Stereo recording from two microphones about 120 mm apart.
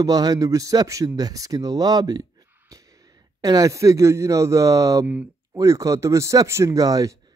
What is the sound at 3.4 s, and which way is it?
A man's voice, 30° right (ahead or behind).